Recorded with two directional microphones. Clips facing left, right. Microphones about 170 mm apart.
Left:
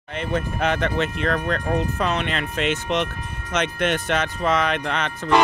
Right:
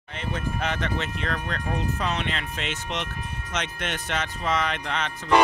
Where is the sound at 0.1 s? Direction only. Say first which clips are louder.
Left 5 dB; 60° left (ahead or behind).